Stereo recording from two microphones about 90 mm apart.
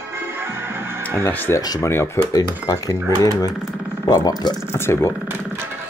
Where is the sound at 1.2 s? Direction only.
25° left (ahead or behind).